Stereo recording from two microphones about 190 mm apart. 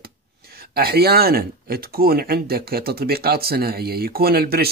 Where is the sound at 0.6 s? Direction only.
55° right (ahead or behind).